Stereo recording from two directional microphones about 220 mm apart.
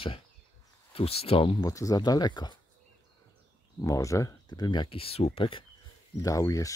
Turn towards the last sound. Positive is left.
turn(degrees=15)  # may be behind; listen again after turning